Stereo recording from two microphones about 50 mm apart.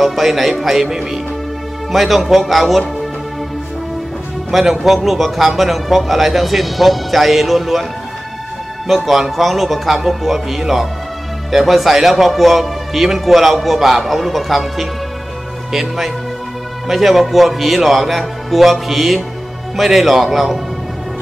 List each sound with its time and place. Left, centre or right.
0.0 s a man's voice: centre
4.5 s a man's voice: centre
8.8 s a man's voice: centre